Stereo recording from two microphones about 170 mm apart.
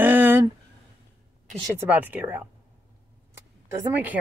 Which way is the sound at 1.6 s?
10° right (ahead or behind).